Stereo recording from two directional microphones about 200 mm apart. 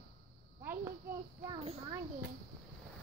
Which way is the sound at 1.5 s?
30° right (ahead or behind).